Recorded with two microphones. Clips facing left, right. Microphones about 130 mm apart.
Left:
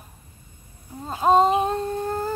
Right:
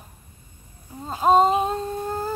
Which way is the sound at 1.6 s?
15° right (ahead or behind).